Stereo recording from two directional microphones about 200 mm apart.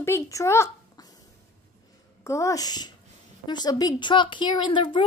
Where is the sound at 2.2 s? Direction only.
15° left (ahead or behind).